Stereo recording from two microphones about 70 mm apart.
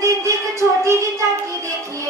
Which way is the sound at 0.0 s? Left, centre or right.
Right.